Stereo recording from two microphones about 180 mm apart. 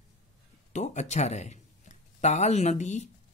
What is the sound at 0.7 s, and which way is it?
Speech, 40° left (ahead or behind).